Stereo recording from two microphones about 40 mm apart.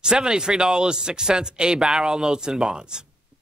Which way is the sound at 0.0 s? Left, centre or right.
Centre.